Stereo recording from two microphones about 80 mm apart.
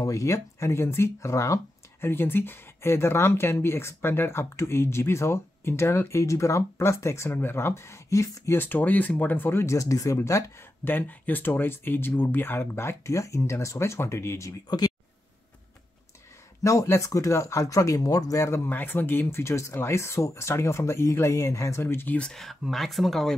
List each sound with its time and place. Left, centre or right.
0.0 s speech: left
8.5 s speech: left
10.8 s speech: left
16.6 s speech: left
18.7 s speech: left
22.3 s speech: centre